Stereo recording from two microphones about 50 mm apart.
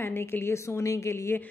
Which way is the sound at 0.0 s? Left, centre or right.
Left.